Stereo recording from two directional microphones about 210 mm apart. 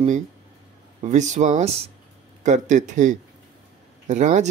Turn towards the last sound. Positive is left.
turn(degrees=-35)  # may be behind; listen again after turning